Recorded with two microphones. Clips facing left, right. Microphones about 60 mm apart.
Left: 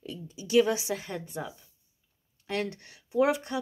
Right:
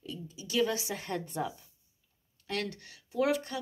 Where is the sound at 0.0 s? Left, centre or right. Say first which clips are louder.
Left 2 dB; left.